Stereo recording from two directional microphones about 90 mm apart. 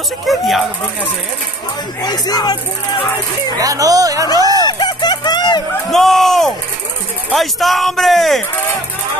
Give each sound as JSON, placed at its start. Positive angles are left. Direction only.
{"t": 0.3, "sound": "a man's voice", "side_deg": 0}
{"t": 2.0, "sound": "speech", "side_deg": 45}
{"t": 3.5, "sound": "speech", "side_deg": -40}
{"t": 4.6, "sound": "a sound", "side_deg": 50}
{"t": 5.9, "sound": "a man's voice", "side_deg": 5}